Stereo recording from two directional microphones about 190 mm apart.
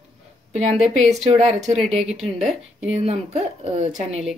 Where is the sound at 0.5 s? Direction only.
35° right (ahead or behind).